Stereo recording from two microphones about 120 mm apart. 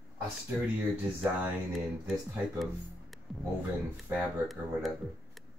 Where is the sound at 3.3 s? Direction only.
Centre (ahead or behind).